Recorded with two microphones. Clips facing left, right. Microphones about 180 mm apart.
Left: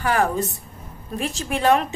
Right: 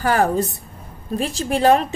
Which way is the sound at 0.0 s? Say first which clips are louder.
Right 3 dB; 35° right (ahead or behind).